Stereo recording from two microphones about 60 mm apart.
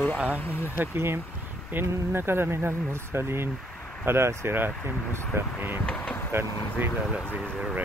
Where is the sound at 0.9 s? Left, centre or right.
Right.